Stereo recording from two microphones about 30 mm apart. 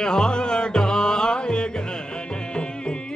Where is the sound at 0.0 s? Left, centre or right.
Left.